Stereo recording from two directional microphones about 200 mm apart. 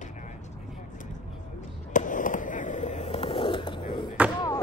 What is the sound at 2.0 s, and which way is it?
Skateboard, 40° left (ahead or behind).